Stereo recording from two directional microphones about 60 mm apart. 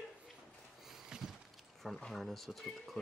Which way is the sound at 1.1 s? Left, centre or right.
Centre.